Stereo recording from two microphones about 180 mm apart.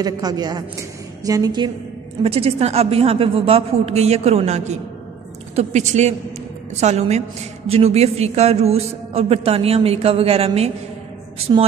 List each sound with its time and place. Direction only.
0.0 s a woman's voice: 20° right (ahead or behind)
2.2 s a man's voice: 35° right (ahead or behind)